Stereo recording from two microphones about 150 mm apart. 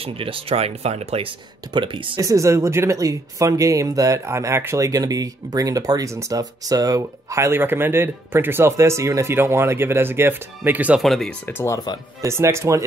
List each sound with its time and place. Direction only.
0.0 s speech: 40° right (ahead or behind)
1.7 s speech: 35° right (ahead or behind)
2.1 s speech: 20° right (ahead or behind)
11.0 s speech: centre (ahead or behind)
11.4 s speech: 15° left (ahead or behind)
12.2 s speech: 20° right (ahead or behind)